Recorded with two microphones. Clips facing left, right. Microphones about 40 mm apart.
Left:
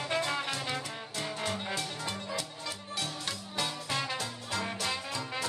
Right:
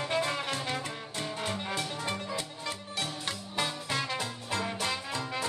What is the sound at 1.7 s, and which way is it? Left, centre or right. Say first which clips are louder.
Music: right 2 dB; centre.